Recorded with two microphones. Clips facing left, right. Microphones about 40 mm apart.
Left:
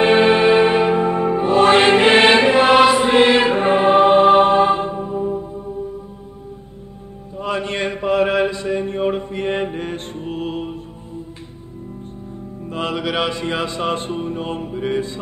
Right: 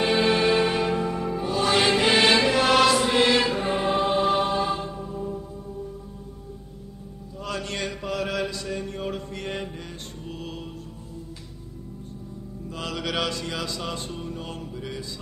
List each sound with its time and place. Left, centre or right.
0.0 s music: left
7.3 s mantra: left
12.6 s music: left
13.0 s music: left